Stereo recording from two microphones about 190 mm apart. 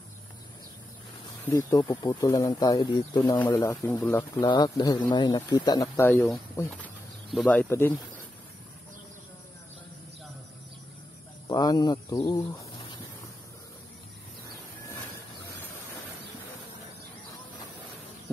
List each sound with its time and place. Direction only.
1.4 s speech: 15° left (ahead or behind)
6.3 s speech: 10° left (ahead or behind)
11.4 s speech: 20° left (ahead or behind)